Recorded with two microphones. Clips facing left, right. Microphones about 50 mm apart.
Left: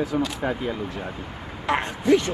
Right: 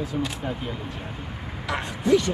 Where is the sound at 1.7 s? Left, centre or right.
Left.